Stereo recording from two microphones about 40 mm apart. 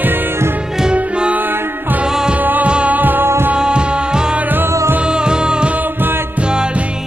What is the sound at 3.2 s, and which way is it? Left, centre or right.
Music, right.